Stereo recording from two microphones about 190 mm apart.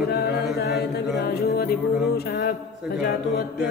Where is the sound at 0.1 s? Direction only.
55° left (ahead or behind).